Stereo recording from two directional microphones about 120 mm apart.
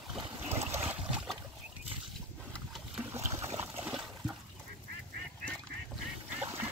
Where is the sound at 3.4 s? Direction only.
60° right (ahead or behind).